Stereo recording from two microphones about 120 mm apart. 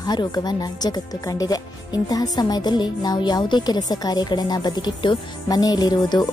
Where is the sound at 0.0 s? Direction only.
35° left (ahead or behind).